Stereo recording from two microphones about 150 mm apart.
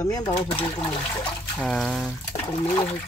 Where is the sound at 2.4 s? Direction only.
30° left (ahead or behind).